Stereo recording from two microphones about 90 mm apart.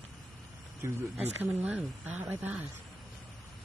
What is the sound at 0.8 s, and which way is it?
Speech, 20° right (ahead or behind).